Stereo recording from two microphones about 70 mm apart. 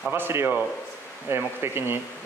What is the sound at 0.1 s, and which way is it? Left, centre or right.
Speech, right.